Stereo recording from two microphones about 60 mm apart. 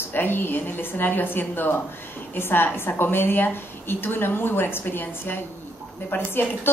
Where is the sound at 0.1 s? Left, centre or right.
Left.